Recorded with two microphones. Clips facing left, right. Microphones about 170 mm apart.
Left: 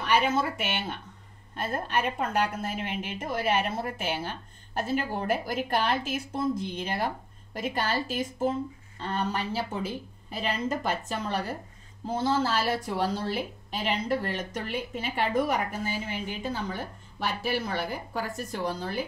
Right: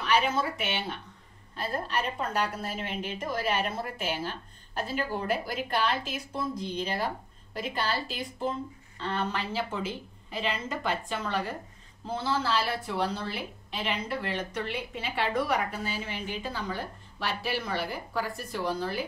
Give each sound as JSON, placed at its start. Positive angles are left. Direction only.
{"t": 0.1, "sound": "a woman's voice", "side_deg": 50}